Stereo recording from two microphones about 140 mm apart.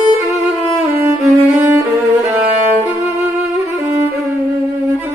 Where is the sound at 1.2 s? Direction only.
20° right (ahead or behind).